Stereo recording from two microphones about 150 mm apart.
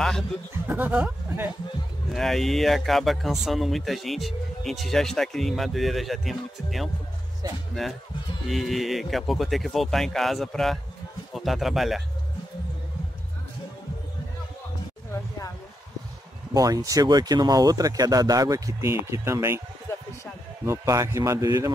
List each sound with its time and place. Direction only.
0.7 s speech: 10° right (ahead or behind)
2.1 s speech: centre (ahead or behind)
7.4 s speech: 25° right (ahead or behind)
8.5 s speech: centre (ahead or behind)
16.5 s speech: 25° right (ahead or behind)
20.6 s speech: 20° right (ahead or behind)